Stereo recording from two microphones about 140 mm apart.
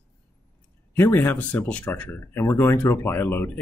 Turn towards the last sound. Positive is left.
turn(degrees=15)  # may be behind; listen again after turning